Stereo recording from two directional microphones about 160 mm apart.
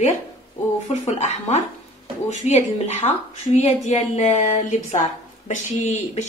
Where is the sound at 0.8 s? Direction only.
45° left (ahead or behind).